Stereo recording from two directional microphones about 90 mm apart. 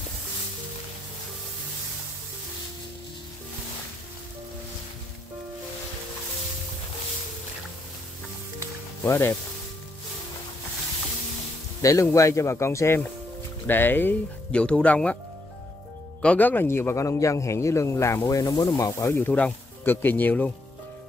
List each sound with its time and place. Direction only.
9.0 s speech: 25° left (ahead or behind)
11.8 s a man's voice: 35° left (ahead or behind); by 15.1 s 15° left (ahead or behind)
16.2 s a man's voice: 15° left (ahead or behind); by 19.1 s 35° left (ahead or behind)
19.1 s speech: 20° left (ahead or behind)